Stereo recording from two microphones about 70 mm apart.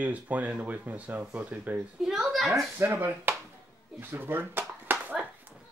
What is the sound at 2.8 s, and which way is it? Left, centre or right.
Speech, right.